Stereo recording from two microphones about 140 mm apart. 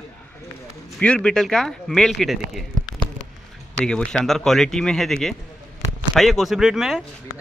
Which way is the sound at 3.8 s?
10° left (ahead or behind).